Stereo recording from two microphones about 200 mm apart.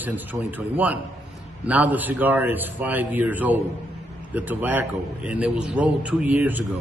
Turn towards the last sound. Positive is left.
turn(degrees=-10)  # may be behind; listen again after turning